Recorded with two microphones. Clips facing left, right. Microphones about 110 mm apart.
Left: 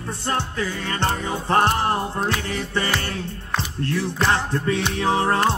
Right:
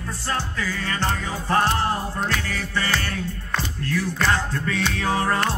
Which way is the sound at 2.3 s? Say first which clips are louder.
Left 2 dB; 20° left (ahead or behind).